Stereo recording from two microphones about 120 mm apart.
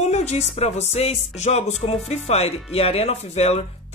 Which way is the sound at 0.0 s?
70° left (ahead or behind).